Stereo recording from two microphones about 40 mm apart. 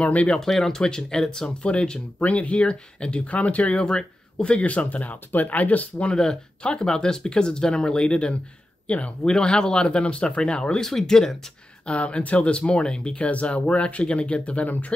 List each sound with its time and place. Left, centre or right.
0.0 s speech: left
0.4 s speech: centre; by 6.0 s left
6.0 s speech: left
9.2 s speech: centre
10.8 s speech: centre
11.9 s speech: left